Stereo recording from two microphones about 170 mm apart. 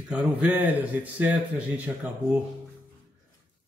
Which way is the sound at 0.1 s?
10° right (ahead or behind).